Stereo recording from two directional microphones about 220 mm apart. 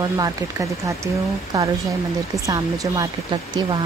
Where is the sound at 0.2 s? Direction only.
15° right (ahead or behind).